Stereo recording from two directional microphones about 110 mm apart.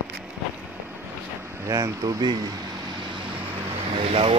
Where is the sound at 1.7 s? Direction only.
30° right (ahead or behind).